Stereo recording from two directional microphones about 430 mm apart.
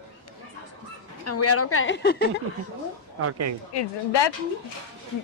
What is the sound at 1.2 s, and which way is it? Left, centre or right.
A woman's voice, left.